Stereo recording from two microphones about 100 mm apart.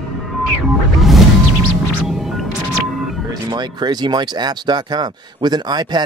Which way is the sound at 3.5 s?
45° right (ahead or behind).